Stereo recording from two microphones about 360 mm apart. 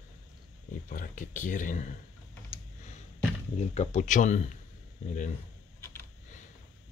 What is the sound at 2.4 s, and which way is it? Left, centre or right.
Computer keyboard, centre.